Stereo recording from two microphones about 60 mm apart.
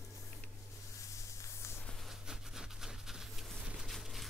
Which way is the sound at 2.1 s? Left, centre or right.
Centre.